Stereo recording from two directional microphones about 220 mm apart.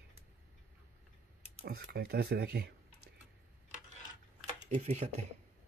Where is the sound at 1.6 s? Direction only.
45° right (ahead or behind).